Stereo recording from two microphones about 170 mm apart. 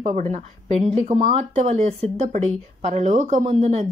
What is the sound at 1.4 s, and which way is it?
Speech, 40° right (ahead or behind).